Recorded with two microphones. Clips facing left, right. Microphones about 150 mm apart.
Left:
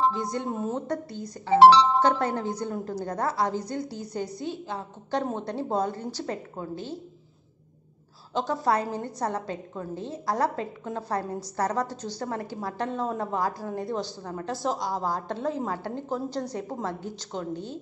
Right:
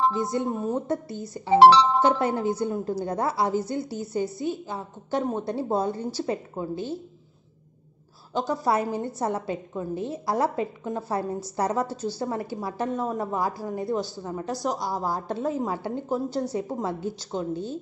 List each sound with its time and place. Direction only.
0.1 s a woman's voice: 5° right (ahead or behind)
1.6 s speech: 65° right (ahead or behind)
2.0 s a woman's voice: 10° right (ahead or behind)
8.3 s a woman's voice: 5° right (ahead or behind)